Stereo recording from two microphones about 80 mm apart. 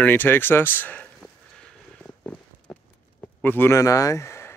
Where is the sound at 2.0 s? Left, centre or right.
Left.